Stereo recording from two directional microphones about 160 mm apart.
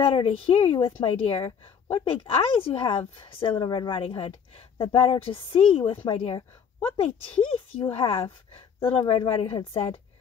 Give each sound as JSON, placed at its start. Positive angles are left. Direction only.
{"t": 0.0, "sound": "a woman's voice", "side_deg": 35}